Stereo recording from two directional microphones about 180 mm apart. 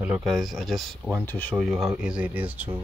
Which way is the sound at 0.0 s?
5° right (ahead or behind).